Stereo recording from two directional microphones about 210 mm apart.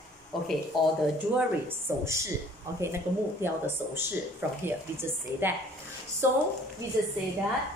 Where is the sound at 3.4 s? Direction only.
10° right (ahead or behind).